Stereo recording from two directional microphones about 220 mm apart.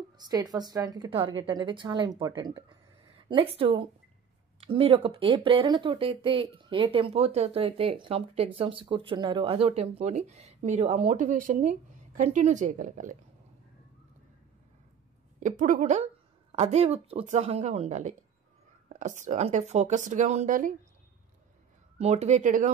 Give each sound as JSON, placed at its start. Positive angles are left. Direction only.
{"t": 0.2, "sound": "speech", "side_deg": -15}
{"t": 15.4, "sound": "speech", "side_deg": -35}
{"t": 21.9, "sound": "speech", "side_deg": -30}